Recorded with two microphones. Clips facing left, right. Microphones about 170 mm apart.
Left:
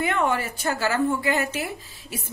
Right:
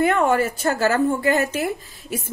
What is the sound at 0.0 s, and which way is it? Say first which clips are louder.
A woman's voice: right 6 dB; 45° right (ahead or behind).